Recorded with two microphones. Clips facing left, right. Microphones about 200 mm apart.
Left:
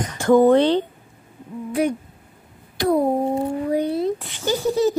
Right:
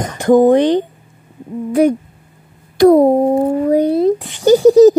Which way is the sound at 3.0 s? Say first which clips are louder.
Right 9 dB; 75° right (ahead or behind).